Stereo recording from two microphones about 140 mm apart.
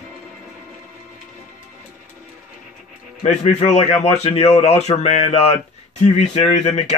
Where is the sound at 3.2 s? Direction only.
50° left (ahead or behind).